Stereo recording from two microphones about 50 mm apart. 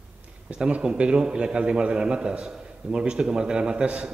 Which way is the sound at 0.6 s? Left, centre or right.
Centre.